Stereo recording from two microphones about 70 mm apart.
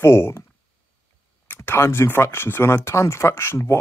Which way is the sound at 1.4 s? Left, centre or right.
Left.